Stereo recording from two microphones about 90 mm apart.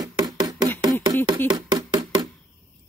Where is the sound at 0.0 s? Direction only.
45° right (ahead or behind).